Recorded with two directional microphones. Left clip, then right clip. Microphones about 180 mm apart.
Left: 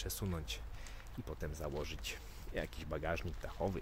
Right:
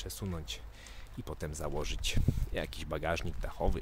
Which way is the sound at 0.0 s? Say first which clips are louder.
Right 1 dB; 10° right (ahead or behind).